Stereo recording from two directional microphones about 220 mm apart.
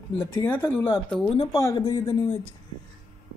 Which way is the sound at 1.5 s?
15° left (ahead or behind).